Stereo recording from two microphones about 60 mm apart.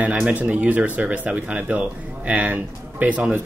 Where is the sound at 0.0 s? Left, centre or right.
Right.